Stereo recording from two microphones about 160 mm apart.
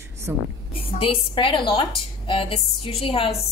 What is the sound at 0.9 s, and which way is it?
A woman's voice, 35° left (ahead or behind).